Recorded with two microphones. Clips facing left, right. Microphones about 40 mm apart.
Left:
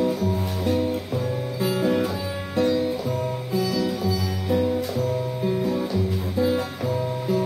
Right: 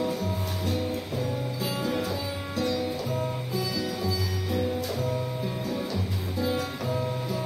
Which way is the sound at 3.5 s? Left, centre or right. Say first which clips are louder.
Left 10 dB; centre.